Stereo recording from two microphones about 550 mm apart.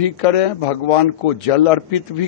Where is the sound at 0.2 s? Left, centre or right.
Left.